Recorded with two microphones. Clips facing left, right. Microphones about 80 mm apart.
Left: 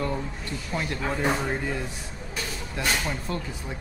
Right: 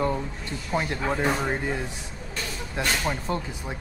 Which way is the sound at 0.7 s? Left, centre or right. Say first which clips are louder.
Right 3 dB; right.